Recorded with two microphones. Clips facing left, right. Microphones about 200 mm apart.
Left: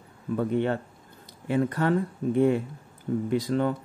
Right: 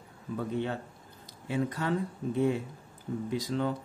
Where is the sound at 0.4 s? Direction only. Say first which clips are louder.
Left 7 dB; 60° left (ahead or behind).